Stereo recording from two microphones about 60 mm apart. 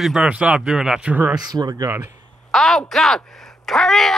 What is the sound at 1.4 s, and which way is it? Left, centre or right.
Speech, right.